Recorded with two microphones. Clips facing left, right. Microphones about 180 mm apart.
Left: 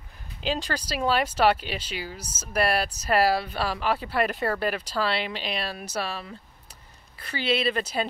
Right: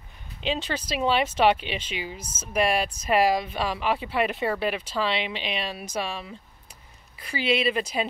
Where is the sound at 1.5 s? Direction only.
40° left (ahead or behind).